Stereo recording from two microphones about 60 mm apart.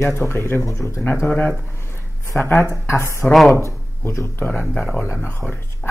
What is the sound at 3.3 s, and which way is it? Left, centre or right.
Speech, centre.